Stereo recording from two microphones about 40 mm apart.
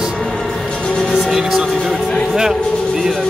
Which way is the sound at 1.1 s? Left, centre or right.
Centre.